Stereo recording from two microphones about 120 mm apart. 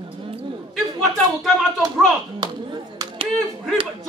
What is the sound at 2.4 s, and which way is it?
Clapping, 40° right (ahead or behind).